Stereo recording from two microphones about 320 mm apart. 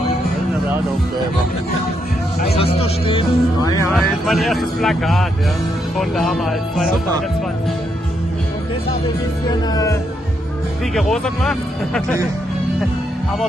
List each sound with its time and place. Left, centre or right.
2.4 s speech: centre
3.8 s speech: centre
9.5 s speech: centre
11.0 s speech: centre